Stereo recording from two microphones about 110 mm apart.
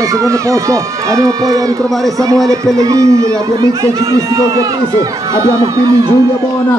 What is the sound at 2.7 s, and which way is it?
Speech, 30° right (ahead or behind).